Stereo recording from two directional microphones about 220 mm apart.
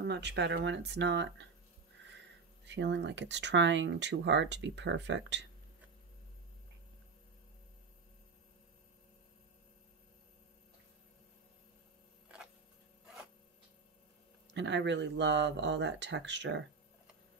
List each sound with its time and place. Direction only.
0.0 s speech: 50° right (ahead or behind)
2.6 s speech: 55° right (ahead or behind)
14.5 s speech: 55° right (ahead or behind)